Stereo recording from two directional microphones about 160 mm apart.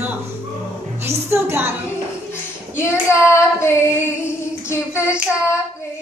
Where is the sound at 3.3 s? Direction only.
15° left (ahead or behind).